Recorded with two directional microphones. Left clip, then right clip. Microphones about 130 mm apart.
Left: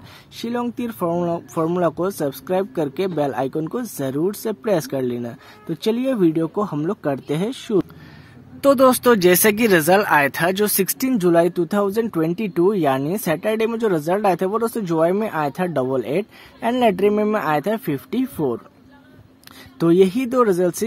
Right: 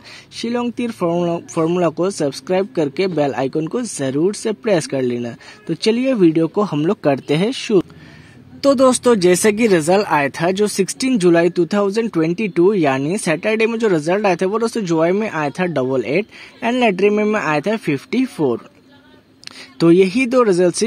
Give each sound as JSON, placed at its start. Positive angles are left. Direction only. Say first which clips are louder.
{"t": 0.4, "sound": "speech", "louder": "right 4 dB", "side_deg": -20}
{"t": 19.8, "sound": "speech", "louder": "right 3 dB", "side_deg": -25}